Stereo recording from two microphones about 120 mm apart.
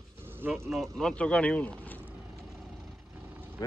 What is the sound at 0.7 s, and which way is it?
Speech, centre (ahead or behind).